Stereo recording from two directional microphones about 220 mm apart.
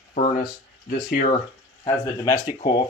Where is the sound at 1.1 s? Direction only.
35° left (ahead or behind).